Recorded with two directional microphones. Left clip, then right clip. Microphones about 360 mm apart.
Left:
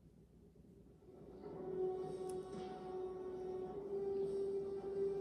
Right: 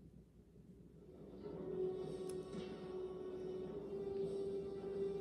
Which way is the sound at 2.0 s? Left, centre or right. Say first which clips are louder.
Left 1 dB; centre.